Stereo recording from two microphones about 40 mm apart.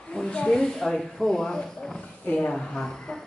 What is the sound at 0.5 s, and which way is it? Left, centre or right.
Speech, centre.